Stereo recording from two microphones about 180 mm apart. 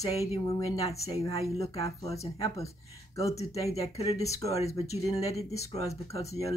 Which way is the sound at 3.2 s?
15° left (ahead or behind).